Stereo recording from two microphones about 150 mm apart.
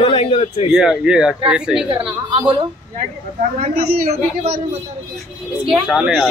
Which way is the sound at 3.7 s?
90° right.